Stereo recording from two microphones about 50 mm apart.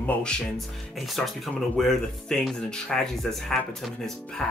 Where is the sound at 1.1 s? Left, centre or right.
Centre.